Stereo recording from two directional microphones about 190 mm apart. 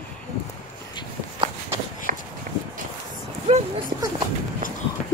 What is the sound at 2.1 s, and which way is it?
Walk, 45° right (ahead or behind).